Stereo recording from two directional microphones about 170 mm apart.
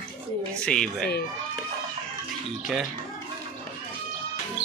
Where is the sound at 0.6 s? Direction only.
5° left (ahead or behind).